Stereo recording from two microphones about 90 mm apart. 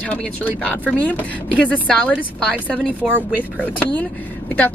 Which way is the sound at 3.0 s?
5° right (ahead or behind).